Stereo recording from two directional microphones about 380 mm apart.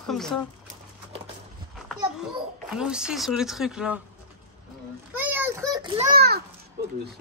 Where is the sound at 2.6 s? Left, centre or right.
Centre.